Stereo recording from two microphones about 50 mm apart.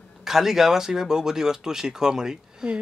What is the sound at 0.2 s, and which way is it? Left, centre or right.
Speech, centre.